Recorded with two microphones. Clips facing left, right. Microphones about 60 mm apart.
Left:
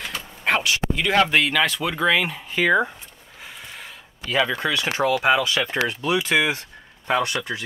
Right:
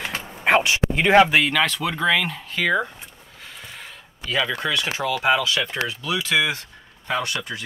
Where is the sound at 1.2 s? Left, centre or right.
Centre.